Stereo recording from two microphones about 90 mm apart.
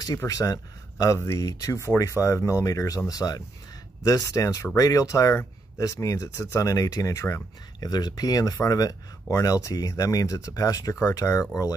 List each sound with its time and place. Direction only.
0.2 s speech: 40° left (ahead or behind)
7.9 s speech: 50° left (ahead or behind)